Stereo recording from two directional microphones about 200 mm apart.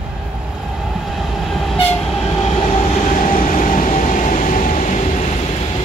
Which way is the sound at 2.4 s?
35° left (ahead or behind).